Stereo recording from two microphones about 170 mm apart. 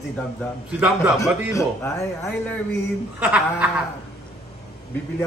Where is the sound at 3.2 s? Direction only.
10° right (ahead or behind).